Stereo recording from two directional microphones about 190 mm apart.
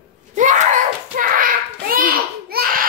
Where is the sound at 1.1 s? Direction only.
45° right (ahead or behind).